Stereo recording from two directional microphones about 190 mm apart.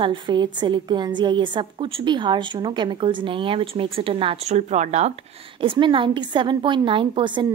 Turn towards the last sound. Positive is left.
turn(degrees=-25)  # may be behind; listen again after turning